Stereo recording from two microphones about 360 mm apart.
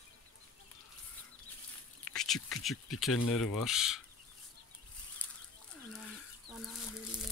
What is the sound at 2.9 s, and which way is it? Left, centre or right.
Speech, centre.